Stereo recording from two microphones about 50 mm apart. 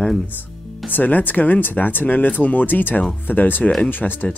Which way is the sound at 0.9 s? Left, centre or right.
Left.